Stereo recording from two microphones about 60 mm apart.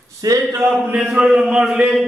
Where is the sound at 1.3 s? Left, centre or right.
Centre.